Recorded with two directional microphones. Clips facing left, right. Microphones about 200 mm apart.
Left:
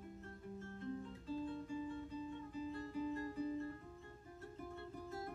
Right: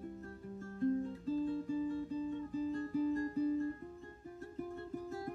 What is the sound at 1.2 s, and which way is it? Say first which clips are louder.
Music: right 8 dB; 40° right (ahead or behind).